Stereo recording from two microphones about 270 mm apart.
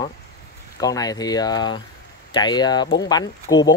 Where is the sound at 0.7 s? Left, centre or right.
Centre.